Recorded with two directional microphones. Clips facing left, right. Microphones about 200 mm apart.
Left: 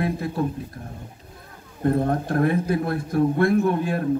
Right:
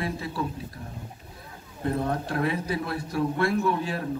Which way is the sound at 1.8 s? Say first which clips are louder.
Left 6 dB; 50° left (ahead or behind).